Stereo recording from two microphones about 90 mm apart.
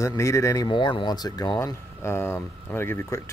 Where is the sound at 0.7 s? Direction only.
65° left (ahead or behind).